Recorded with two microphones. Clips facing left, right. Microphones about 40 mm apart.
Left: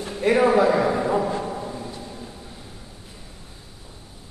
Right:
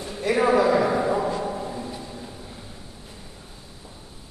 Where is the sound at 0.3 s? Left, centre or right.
Left.